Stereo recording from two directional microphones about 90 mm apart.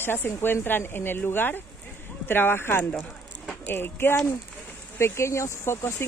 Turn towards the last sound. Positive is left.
turn(degrees=30)  # may be behind; listen again after turning